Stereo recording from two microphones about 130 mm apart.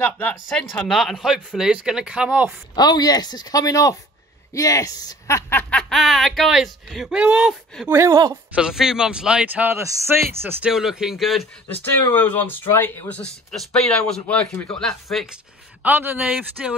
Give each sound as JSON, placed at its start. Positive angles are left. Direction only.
{"t": 0.0, "sound": "speech", "side_deg": 10}
{"t": 2.7, "sound": "speech", "side_deg": 30}
{"t": 7.9, "sound": "speech", "side_deg": -25}
{"t": 8.5, "sound": "speech", "side_deg": -5}
{"t": 10.7, "sound": "speech", "side_deg": -5}
{"t": 11.8, "sound": "speech", "side_deg": 15}
{"t": 13.2, "sound": "speech", "side_deg": 5}
{"t": 15.8, "sound": "speech", "side_deg": -15}